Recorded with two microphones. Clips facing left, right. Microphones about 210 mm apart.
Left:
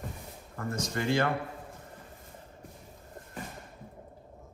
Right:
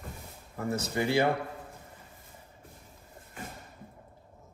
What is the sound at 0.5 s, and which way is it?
Speech, 5° right (ahead or behind).